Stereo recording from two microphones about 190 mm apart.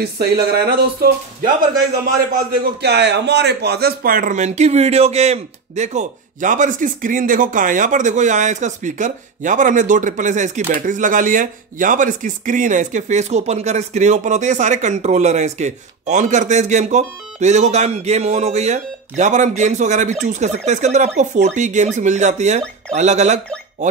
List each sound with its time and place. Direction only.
0.0 s a man's voice: 55° right (ahead or behind); by 23.4 s 35° right (ahead or behind)